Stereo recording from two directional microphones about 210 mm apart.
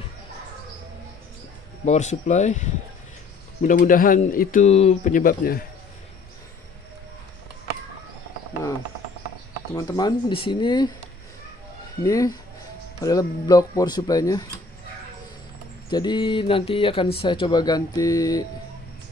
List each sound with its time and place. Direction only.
1.9 s speech: 35° left (ahead or behind)
9.8 s speech: 20° left (ahead or behind)
12.0 s speech: 15° left (ahead or behind)
15.9 s speech: 20° left (ahead or behind)